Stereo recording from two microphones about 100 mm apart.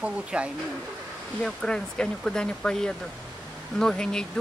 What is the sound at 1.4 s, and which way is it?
Speech, 5° left (ahead or behind).